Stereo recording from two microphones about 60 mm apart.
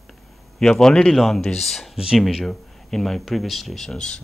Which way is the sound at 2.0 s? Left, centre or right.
Centre.